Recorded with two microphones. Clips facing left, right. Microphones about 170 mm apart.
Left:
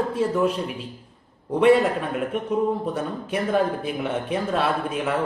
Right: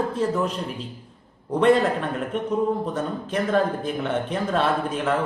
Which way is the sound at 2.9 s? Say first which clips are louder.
Right 1 dB; 10° left (ahead or behind).